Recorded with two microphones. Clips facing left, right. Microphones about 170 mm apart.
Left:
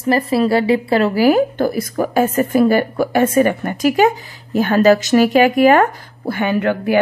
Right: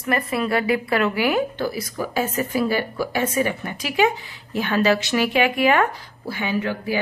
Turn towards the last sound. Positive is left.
turn(degrees=60)  # may be behind; listen again after turning